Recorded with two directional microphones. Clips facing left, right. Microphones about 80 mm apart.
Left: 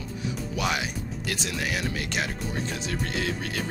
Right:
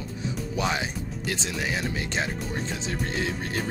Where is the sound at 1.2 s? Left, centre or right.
Right.